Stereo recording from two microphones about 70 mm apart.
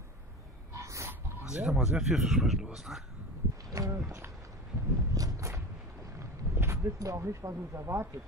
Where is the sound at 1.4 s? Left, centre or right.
Centre.